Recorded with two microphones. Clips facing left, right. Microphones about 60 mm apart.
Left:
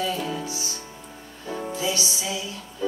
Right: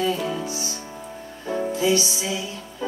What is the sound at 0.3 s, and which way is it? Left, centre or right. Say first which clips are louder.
Music: right 2 dB; right.